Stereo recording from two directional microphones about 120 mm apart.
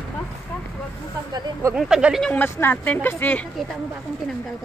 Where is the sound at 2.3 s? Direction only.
20° left (ahead or behind).